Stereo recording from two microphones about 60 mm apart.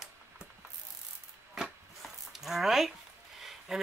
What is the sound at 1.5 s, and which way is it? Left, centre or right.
Chopping, centre.